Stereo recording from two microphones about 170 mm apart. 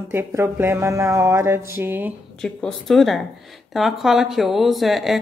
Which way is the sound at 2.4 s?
5° left (ahead or behind).